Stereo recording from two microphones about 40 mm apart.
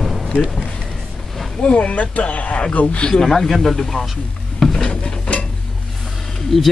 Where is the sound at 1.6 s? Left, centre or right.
Left.